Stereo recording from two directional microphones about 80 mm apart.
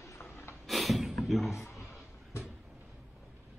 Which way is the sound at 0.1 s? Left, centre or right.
Left.